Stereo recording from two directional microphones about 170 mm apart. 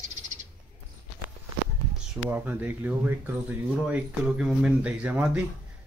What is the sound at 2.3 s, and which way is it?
Speech, 10° right (ahead or behind).